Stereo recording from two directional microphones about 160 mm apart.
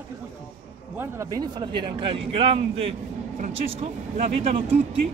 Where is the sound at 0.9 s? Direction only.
15° right (ahead or behind); by 4.6 s 40° right (ahead or behind).